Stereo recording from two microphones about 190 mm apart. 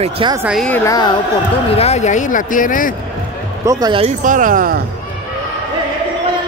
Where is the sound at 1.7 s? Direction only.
35° left (ahead or behind).